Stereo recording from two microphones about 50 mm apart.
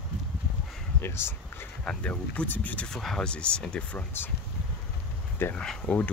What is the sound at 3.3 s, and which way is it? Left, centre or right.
Speech, left.